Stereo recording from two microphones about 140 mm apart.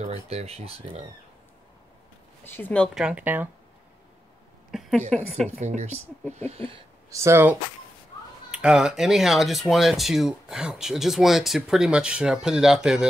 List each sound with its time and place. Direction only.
0.0 s speech: 50° right (ahead or behind)
2.4 s speech: 15° left (ahead or behind)
2.9 s speech: 5° right (ahead or behind)
4.6 s a sound: centre (ahead or behind)
5.1 s speech: 5° left (ahead or behind)
5.6 s speech: 55° right (ahead or behind)
7.1 s speech: 20° right (ahead or behind)
8.5 s speech: 5° right (ahead or behind)